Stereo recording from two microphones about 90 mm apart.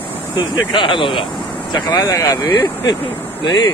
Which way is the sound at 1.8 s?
50° left (ahead or behind).